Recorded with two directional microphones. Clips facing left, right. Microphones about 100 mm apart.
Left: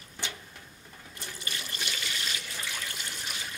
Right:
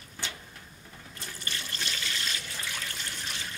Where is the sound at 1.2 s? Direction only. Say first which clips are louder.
Even; 15° left (ahead or behind).